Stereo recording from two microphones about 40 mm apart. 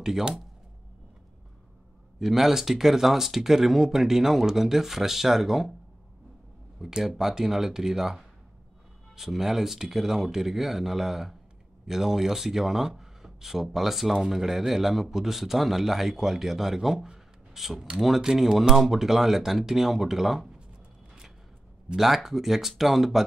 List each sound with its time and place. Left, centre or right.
2.1 s a man's voice: centre
6.8 s a man's voice: centre
18.3 s speech: right
18.8 s a man's voice: centre
21.9 s speech: centre